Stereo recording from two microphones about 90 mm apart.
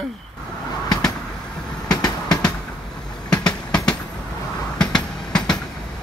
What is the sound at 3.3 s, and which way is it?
Train, 10° left (ahead or behind).